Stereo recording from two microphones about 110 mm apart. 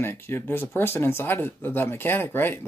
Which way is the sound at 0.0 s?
20° left (ahead or behind).